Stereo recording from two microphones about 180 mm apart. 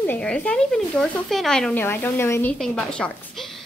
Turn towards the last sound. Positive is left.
turn(degrees=5)  # may be behind; listen again after turning